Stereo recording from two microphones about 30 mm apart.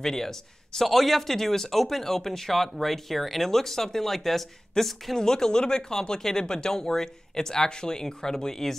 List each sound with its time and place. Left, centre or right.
0.0 s speech: centre
0.8 s speech: centre
5.1 s speech: centre